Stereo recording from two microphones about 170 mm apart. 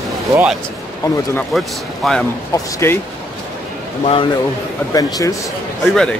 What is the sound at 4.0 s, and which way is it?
Speech, 35° left (ahead or behind).